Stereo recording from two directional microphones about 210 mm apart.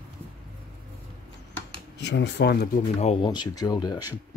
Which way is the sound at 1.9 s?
55° left (ahead or behind).